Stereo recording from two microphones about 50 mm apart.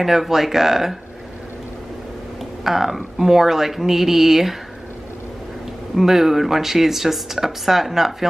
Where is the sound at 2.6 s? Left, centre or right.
Centre.